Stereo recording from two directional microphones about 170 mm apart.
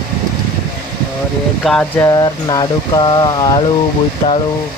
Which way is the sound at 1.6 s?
Centre (ahead or behind).